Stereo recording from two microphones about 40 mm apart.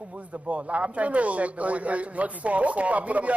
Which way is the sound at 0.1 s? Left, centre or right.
Right.